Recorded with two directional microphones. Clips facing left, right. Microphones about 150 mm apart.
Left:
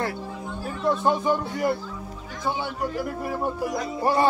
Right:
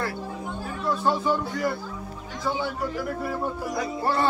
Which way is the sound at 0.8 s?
20° left (ahead or behind).